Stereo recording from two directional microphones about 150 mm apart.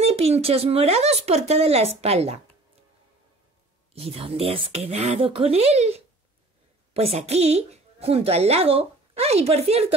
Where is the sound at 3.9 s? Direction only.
40° right (ahead or behind).